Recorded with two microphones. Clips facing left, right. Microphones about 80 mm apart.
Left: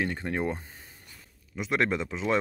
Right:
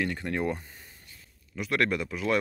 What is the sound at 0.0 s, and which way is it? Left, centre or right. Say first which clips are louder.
Speech: even; left.